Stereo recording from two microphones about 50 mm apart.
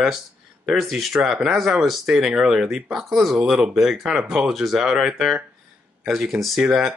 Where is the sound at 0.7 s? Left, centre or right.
Centre.